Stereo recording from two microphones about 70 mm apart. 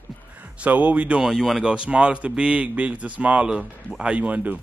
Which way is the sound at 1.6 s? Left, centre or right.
Centre.